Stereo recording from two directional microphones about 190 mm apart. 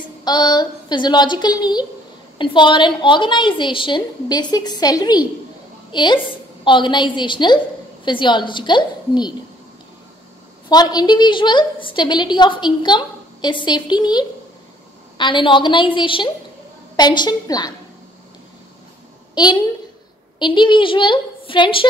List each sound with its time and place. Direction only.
0.2 s a woman's voice: 20° left (ahead or behind)
10.7 s a woman's voice: 20° left (ahead or behind)
19.3 s a woman's voice: 20° left (ahead or behind)